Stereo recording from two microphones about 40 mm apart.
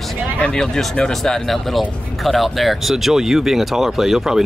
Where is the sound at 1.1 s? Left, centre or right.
Centre.